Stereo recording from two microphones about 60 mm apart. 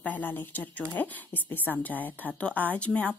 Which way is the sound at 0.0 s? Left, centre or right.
Left.